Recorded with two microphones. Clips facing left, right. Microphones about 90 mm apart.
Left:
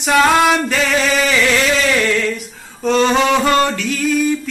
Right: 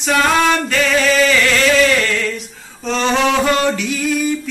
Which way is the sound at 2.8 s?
5° left (ahead or behind).